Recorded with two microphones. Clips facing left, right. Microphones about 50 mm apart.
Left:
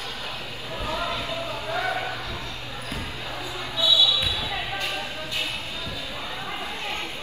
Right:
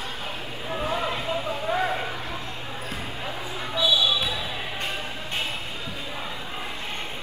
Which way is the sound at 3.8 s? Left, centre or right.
Right.